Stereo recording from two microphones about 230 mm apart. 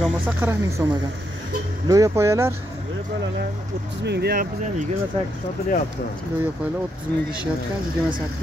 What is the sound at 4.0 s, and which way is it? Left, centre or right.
Speech, right.